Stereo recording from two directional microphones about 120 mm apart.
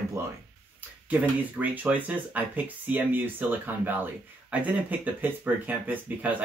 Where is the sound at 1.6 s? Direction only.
15° right (ahead or behind).